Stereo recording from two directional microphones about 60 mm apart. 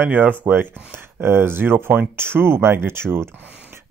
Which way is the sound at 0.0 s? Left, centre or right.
Right.